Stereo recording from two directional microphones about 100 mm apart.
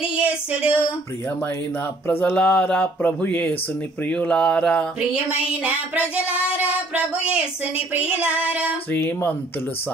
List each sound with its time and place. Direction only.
0.1 s a sound: 10° right (ahead or behind)
2.0 s speech: 15° left (ahead or behind)
5.1 s child singing: 15° right (ahead or behind)
8.9 s speech: 20° left (ahead or behind)